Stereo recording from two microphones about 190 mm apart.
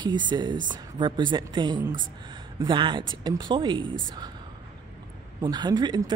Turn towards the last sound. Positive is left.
turn(degrees=-20)  # may be behind; listen again after turning